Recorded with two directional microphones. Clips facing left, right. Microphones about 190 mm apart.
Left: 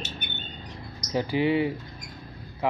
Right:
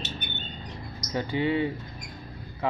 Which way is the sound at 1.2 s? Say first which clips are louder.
Left 2 dB; 15° left (ahead or behind).